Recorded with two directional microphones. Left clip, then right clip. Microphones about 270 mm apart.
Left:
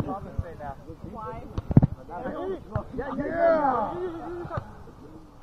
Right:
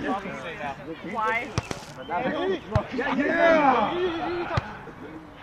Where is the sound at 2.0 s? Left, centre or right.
Right.